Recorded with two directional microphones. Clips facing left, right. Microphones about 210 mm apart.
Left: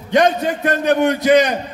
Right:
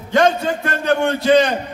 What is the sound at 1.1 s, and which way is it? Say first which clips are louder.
Speech: left 1 dB; 25° right (ahead or behind).